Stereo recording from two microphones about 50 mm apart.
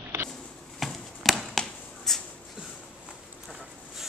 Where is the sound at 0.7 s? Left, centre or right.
Centre.